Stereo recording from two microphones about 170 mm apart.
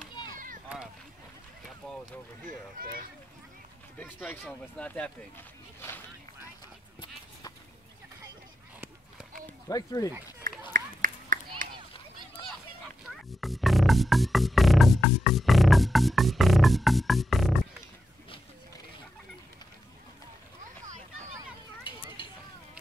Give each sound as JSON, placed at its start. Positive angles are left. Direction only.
{"t": 1.8, "sound": "run", "side_deg": 5}
{"t": 2.4, "sound": "speech", "side_deg": -55}
{"t": 4.3, "sound": "speech", "side_deg": 10}
{"t": 9.7, "sound": "speech", "side_deg": 20}
{"t": 10.7, "sound": "a sound", "side_deg": -50}
{"t": 13.3, "sound": "music", "side_deg": 0}